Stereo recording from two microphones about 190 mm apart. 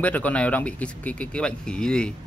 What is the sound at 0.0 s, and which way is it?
Speech, 10° left (ahead or behind).